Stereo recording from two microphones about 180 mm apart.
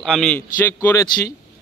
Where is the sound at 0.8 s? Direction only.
15° left (ahead or behind).